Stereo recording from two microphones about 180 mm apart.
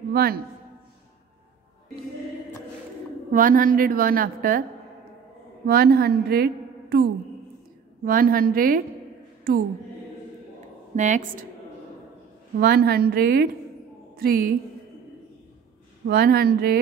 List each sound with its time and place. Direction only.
0.1 s a man's voice: 60° right (ahead or behind)
3.3 s a woman's voice: 50° right (ahead or behind)
5.7 s a woman's voice: 60° right (ahead or behind)
11.0 s a woman's voice: 45° right (ahead or behind)
12.5 s a woman's voice: 60° right (ahead or behind)
16.1 s a woman's voice: 60° right (ahead or behind)